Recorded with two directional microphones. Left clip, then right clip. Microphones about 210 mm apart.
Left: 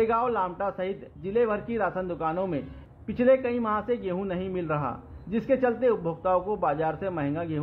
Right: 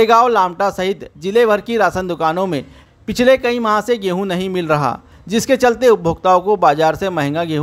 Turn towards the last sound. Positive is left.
turn(degrees=-60)  # may be behind; listen again after turning